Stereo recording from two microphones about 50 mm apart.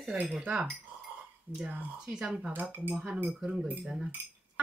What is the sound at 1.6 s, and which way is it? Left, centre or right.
Speech, right.